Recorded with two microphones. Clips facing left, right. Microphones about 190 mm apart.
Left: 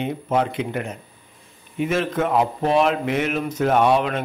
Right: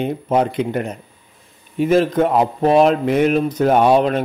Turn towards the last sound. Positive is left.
turn(degrees=-35)  # may be behind; listen again after turning